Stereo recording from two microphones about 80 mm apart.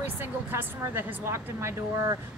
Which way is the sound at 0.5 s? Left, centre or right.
Right.